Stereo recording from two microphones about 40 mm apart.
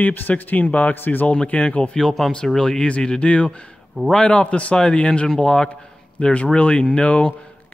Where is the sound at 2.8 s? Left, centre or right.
Left.